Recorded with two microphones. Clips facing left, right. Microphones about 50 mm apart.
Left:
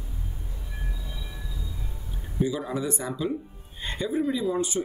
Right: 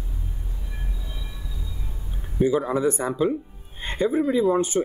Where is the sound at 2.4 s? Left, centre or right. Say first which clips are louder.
Right 6 dB; right.